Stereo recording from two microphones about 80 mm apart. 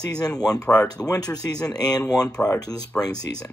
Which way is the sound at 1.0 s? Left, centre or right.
Left.